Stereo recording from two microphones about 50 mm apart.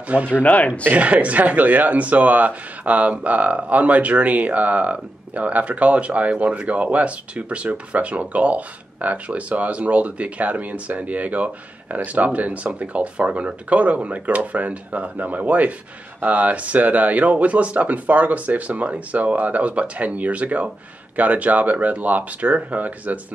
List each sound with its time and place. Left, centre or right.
0.3 s speech: left
0.9 s speech: right